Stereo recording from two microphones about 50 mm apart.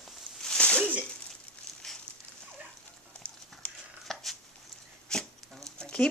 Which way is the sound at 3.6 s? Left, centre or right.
Left.